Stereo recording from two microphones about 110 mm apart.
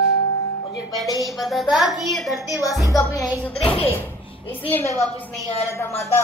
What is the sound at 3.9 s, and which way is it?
A child's voice, 25° left (ahead or behind).